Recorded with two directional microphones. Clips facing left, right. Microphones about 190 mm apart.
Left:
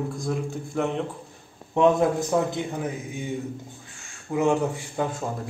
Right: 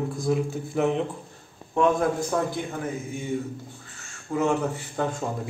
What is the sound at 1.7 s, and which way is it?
A man's voice, 20° left (ahead or behind).